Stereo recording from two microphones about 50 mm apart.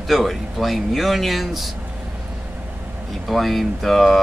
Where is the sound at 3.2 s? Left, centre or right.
Centre.